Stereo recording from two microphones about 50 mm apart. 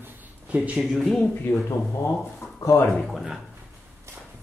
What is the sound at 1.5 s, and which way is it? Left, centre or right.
Speech, left.